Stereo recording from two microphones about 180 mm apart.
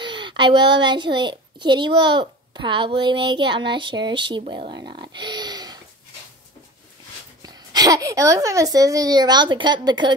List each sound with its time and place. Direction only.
0.0 s a child's voice: 25° right (ahead or behind)
7.4 s a child's voice: 20° right (ahead or behind)